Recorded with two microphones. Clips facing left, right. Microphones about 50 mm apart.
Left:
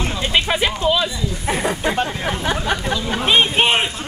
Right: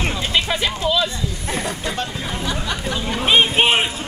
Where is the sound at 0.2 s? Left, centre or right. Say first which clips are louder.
Left 5 dB; centre.